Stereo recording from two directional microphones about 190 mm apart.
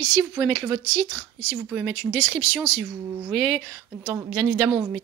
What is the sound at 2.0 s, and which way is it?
Speech, 10° left (ahead or behind).